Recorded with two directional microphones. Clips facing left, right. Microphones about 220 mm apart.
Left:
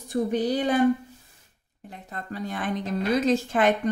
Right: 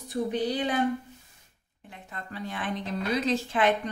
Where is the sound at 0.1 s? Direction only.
45° left (ahead or behind).